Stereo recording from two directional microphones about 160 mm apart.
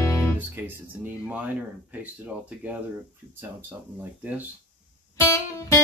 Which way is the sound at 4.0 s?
10° right (ahead or behind).